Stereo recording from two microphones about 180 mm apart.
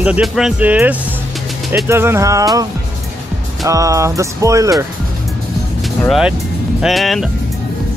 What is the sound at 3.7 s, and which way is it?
Speech, 20° right (ahead or behind).